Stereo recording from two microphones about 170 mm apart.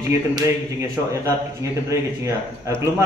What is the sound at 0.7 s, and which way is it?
Speech, 20° right (ahead or behind).